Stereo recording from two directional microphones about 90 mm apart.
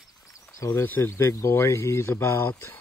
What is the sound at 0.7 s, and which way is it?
Speech, 20° left (ahead or behind).